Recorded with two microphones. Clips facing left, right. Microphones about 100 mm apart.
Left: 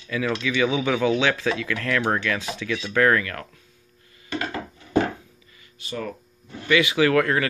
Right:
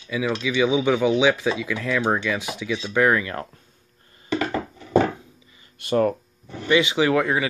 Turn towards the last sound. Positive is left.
turn(degrees=-15)  # may be behind; listen again after turning